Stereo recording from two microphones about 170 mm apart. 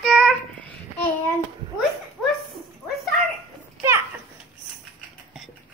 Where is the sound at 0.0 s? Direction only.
5° left (ahead or behind).